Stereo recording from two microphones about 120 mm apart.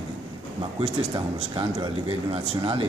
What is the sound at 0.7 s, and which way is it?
Speech, 45° right (ahead or behind).